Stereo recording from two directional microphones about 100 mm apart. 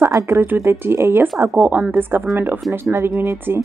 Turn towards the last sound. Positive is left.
turn(degrees=-25)  # may be behind; listen again after turning